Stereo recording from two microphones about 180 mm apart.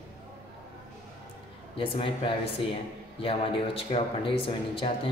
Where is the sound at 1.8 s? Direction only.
30° left (ahead or behind).